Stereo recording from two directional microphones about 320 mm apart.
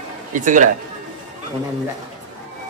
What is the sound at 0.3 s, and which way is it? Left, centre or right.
Speech, right.